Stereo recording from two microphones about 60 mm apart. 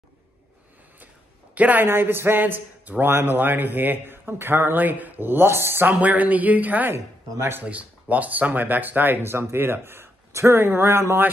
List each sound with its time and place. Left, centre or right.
1.5 s speech: right
1.9 s speech: right
5.9 s speech: right
7.3 s speech: right
7.6 s speech: right